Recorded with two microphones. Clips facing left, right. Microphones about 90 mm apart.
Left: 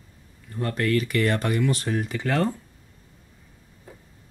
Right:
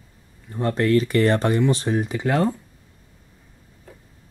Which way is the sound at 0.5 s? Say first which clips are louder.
Right 5 dB; 25° right (ahead or behind).